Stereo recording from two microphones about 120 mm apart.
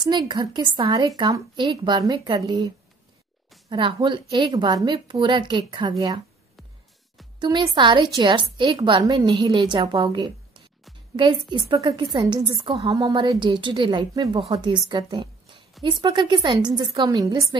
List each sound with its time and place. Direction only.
0.0 s a woman's voice: 40° right (ahead or behind)
3.7 s a woman's voice: 45° right (ahead or behind)
7.3 s a woman's voice: 40° right (ahead or behind)